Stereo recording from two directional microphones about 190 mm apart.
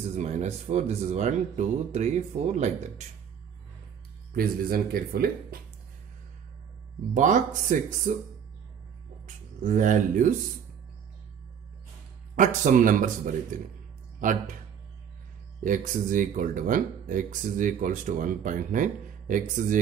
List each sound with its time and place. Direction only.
0.1 s speech: 35° right (ahead or behind)
4.4 s speech: 50° right (ahead or behind)
7.2 s speech: 40° right (ahead or behind)
12.4 s speech: 40° right (ahead or behind)
15.6 s speech: 45° right (ahead or behind)